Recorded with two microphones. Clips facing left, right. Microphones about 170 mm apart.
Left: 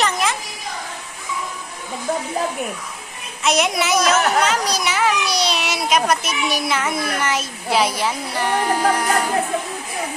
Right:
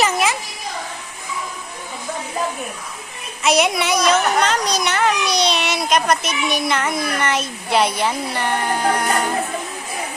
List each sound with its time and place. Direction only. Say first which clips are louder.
0.0 s children playing: right 2 dB; 5° right (ahead or behind)
3.4 s a child's voice: right 2 dB; centre (ahead or behind)